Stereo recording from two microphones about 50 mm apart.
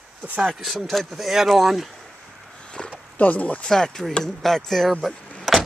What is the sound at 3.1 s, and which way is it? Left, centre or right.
Speech, left.